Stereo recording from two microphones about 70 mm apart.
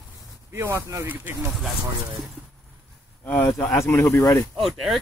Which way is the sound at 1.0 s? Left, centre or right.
Right.